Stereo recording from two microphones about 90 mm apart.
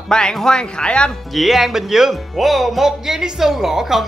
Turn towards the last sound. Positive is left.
turn(degrees=-5)  # may be behind; listen again after turning